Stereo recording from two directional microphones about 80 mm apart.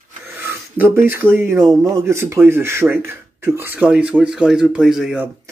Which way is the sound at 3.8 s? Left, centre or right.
Centre.